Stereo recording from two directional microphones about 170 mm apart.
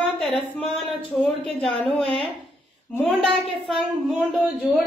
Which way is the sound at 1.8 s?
Centre (ahead or behind).